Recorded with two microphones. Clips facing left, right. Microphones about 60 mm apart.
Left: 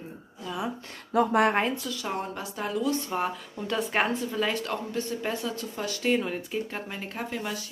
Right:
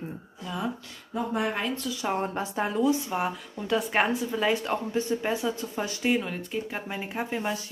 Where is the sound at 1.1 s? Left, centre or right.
Left.